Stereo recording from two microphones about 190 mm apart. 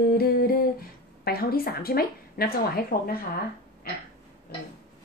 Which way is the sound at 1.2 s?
50° left (ahead or behind).